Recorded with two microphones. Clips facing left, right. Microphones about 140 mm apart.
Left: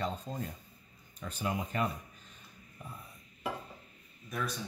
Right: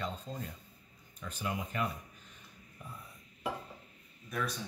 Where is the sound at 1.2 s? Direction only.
35° left (ahead or behind).